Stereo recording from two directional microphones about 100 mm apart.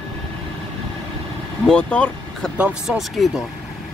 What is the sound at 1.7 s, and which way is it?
Speech, 10° left (ahead or behind).